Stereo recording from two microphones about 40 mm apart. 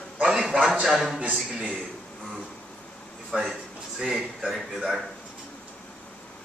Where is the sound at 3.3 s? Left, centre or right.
Right.